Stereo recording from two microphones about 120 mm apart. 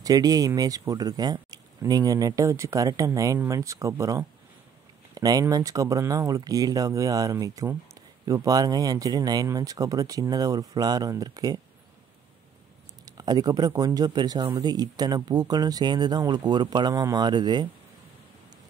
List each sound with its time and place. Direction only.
0.0 s speech: 30° right (ahead or behind)
13.0 s speech: 35° right (ahead or behind)